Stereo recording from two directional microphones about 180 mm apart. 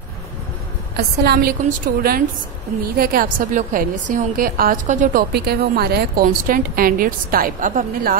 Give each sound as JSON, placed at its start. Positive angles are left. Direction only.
{"t": 0.9, "sound": "a woman's voice", "side_deg": -60}
{"t": 5.3, "sound": "a woman's voice", "side_deg": -60}